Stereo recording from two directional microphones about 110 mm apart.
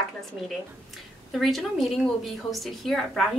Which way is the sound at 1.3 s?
Centre (ahead or behind).